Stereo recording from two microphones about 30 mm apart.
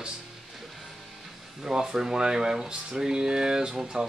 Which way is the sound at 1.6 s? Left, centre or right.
Right.